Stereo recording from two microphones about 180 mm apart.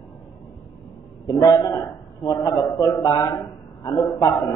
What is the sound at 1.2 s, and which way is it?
A man's voice, 20° left (ahead or behind).